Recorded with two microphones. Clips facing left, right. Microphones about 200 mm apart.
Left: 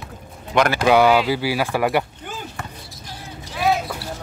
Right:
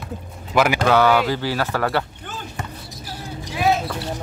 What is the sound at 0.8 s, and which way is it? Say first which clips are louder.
Speech: left 3 dB; 15° left (ahead or behind).